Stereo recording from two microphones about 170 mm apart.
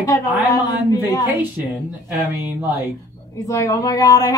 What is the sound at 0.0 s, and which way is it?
Speech, 20° left (ahead or behind).